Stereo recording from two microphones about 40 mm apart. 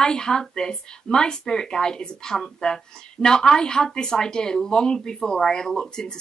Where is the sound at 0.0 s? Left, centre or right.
Centre.